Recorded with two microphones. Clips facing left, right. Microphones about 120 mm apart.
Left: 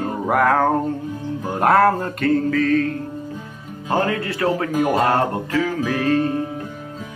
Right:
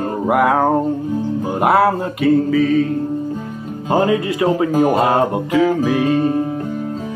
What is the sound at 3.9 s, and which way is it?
Speech, 15° right (ahead or behind).